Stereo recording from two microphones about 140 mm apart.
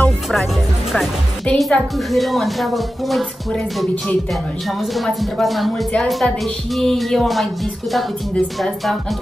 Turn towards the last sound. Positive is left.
turn(degrees=0)  # may be behind; listen again after turning